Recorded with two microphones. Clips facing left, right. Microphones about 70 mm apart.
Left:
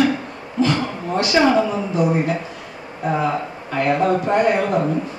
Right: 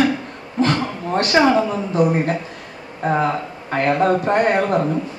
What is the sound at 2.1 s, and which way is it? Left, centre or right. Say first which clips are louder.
A woman's voice: even; right.